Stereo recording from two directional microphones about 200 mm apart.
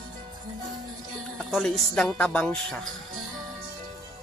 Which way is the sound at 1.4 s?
Centre (ahead or behind).